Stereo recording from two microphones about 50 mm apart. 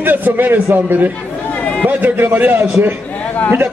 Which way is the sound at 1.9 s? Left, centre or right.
Right.